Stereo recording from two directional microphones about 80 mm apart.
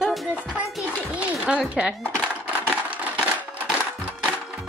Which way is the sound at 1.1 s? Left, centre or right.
Centre.